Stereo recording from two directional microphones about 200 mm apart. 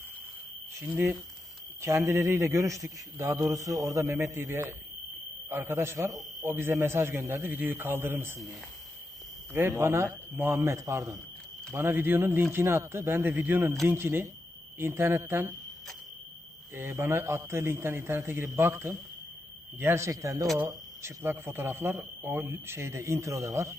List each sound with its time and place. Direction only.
0.7 s speech: 10° right (ahead or behind)
16.7 s speech: 10° right (ahead or behind)